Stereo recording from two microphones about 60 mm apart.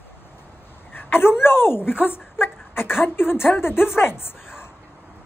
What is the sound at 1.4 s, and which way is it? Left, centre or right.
Speech, left.